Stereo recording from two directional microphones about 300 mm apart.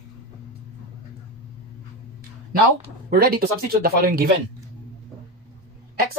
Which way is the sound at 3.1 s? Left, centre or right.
Right.